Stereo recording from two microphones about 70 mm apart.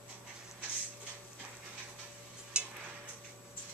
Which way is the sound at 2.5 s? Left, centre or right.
Centre.